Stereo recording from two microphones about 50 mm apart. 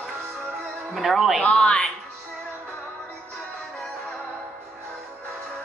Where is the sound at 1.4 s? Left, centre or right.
Centre.